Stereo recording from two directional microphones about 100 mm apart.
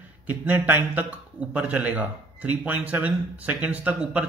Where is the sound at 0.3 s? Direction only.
20° right (ahead or behind).